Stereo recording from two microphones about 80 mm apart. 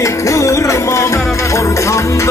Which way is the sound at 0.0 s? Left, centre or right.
Left.